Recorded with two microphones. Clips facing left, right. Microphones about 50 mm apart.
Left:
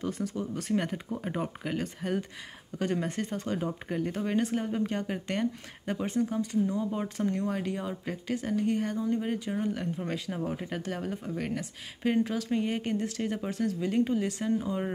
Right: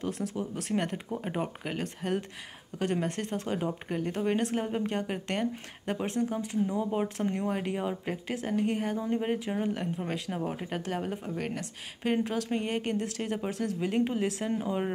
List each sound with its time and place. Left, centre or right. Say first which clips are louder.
0.0 s speech: even; centre
9.0 s speech: even; right
9.6 s speech: even; centre
13.9 s speech: even; centre